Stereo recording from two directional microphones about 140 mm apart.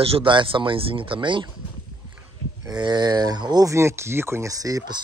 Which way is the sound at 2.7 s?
30° right (ahead or behind).